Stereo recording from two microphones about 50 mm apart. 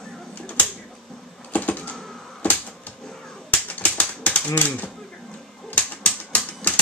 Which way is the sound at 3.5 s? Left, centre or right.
Left.